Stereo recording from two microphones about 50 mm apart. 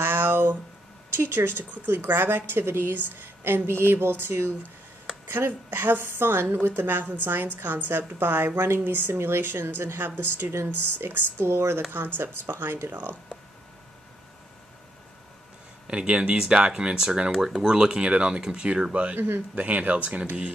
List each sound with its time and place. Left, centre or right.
0.0 s a sound: right
1.1 s a woman's voice: right
2.0 s a woman's voice: right
12.9 s speech: right
15.9 s speech: centre
17.6 s speech: centre
19.1 s a woman's voice: right
19.5 s speech: right